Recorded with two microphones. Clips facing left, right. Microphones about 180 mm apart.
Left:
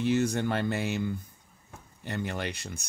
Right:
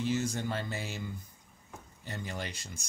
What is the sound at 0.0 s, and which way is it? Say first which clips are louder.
Speech: left 6 dB; 65° left (ahead or behind).